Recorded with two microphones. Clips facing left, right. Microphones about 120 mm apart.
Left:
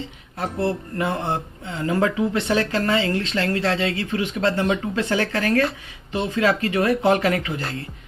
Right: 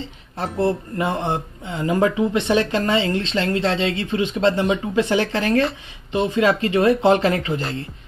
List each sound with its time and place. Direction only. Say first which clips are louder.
0.4 s speech: right 3 dB; 25° right (ahead or behind)